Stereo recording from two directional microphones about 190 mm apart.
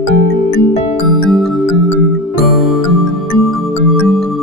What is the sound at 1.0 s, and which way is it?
Music, centre (ahead or behind).